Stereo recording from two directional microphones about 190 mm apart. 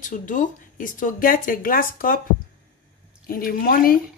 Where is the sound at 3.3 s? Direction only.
50° left (ahead or behind).